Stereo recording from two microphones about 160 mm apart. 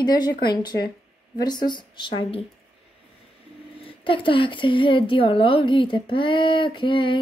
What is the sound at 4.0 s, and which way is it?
Speech, 30° left (ahead or behind).